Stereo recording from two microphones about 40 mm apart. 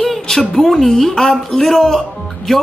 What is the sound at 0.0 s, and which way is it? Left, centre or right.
Speech, centre.